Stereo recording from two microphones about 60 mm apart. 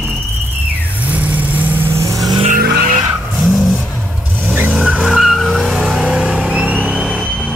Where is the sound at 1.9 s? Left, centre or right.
Right.